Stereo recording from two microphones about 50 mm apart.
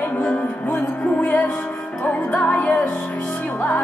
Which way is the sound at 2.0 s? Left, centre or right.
Left.